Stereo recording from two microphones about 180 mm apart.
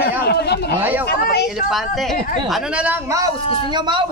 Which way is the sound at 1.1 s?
60° left (ahead or behind).